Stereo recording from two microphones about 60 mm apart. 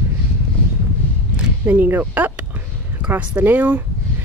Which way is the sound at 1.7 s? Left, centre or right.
Right.